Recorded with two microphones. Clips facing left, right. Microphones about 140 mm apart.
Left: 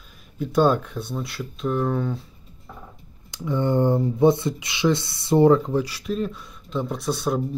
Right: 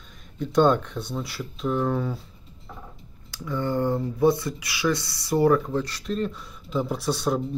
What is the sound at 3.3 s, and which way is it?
Speech, 20° left (ahead or behind).